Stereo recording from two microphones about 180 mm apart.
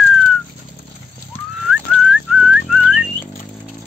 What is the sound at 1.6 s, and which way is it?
Whistling, 5° right (ahead or behind).